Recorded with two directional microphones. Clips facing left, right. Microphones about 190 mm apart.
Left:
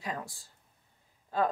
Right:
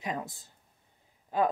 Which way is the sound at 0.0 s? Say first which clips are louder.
Right 3 dB; 20° right (ahead or behind).